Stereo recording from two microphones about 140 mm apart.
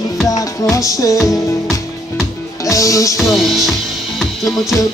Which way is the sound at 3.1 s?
Centre (ahead or behind).